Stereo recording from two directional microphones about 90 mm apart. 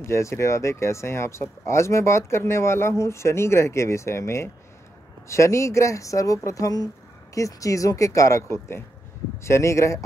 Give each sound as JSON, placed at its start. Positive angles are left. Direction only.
{"t": 0.0, "sound": "speech", "side_deg": 30}